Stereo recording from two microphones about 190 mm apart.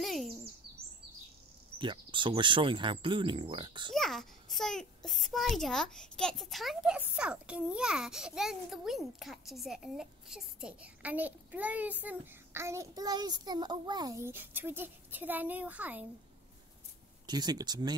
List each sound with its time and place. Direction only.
0.0 s speech: centre (ahead or behind)
1.8 s speech: 25° right (ahead or behind)
3.9 s a child's voice: centre (ahead or behind)
17.3 s speech: 20° right (ahead or behind)